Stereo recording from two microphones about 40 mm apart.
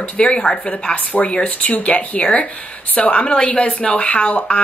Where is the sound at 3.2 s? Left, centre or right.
Left.